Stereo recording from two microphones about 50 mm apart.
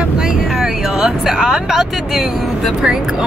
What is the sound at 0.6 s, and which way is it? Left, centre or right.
Speech, centre.